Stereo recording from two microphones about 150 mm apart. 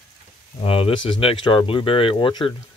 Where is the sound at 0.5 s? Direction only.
40° left (ahead or behind).